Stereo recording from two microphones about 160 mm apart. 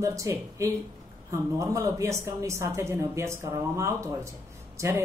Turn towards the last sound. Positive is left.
turn(degrees=-20)  # may be behind; listen again after turning